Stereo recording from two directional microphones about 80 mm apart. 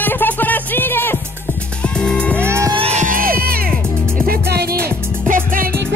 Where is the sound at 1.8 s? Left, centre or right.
Centre.